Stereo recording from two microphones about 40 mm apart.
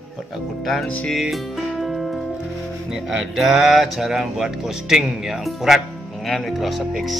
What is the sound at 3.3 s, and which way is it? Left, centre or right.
Speech, centre.